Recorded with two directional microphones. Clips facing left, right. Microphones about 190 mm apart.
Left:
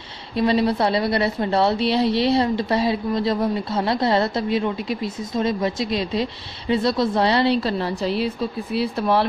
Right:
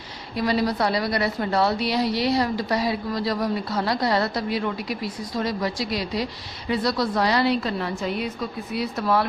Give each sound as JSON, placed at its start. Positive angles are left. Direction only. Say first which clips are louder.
{"t": 0.4, "sound": "a woman's voice", "louder": "left 4 dB", "side_deg": 25}